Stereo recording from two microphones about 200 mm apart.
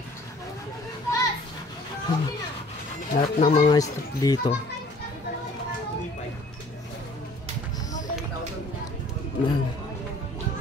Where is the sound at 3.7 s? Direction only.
15° left (ahead or behind).